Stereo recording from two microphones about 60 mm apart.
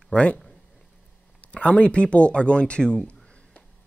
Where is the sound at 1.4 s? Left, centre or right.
Left.